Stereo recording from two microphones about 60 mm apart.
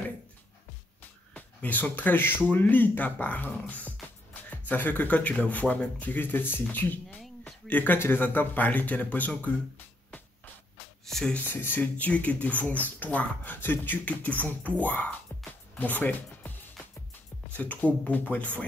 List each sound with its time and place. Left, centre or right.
1.3 s speech: left
11.1 s speech: centre
11.4 s speech: left
11.8 s speech: left